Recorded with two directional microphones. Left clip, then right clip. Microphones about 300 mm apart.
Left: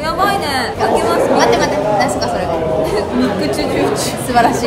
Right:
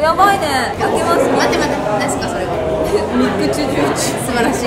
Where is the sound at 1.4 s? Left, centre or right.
Centre.